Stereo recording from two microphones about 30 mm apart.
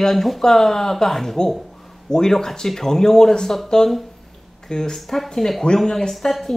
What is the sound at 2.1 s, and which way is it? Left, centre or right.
Speech, left.